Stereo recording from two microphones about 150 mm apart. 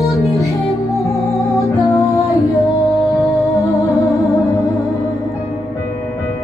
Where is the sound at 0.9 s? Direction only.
20° left (ahead or behind).